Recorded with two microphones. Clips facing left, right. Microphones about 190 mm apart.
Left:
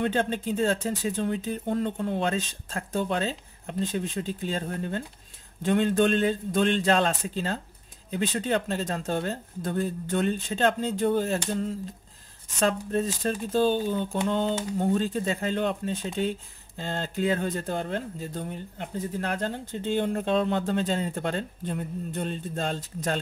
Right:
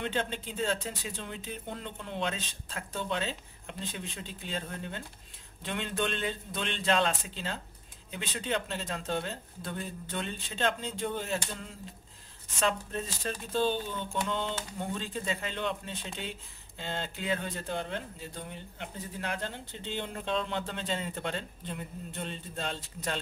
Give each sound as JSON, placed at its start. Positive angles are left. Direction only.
{"t": 0.0, "sound": "speech", "side_deg": 45}